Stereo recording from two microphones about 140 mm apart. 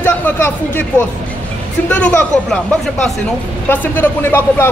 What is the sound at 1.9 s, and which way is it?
Speech, 5° left (ahead or behind).